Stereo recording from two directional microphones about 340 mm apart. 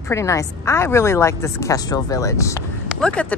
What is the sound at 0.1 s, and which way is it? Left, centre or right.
A woman's voice, centre.